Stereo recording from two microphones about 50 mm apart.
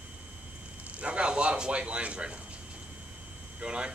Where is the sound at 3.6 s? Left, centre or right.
Centre.